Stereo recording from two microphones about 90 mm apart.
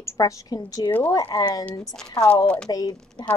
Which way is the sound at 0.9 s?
20° left (ahead or behind).